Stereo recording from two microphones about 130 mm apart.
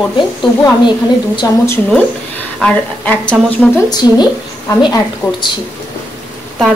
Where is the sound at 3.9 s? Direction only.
30° left (ahead or behind).